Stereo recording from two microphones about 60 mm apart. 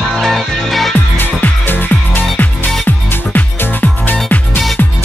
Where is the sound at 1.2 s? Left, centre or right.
Left.